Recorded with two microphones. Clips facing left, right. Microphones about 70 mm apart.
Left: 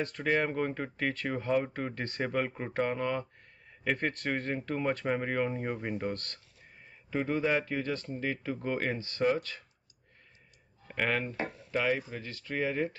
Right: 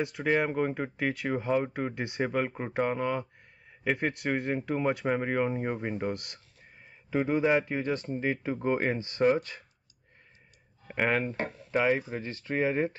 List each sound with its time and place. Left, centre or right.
0.0 s speech: centre
10.9 s speech: centre